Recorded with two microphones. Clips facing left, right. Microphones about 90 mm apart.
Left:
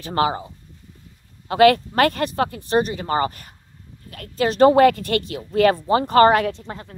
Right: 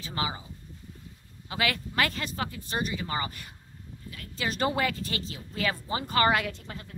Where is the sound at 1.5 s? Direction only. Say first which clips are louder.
Left 16 dB; 50° left (ahead or behind).